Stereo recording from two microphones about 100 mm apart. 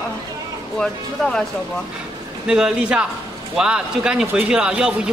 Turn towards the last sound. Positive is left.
turn(degrees=-10)  # may be behind; listen again after turning